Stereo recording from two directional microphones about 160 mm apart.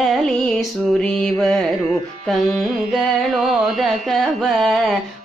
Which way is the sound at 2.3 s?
Centre (ahead or behind).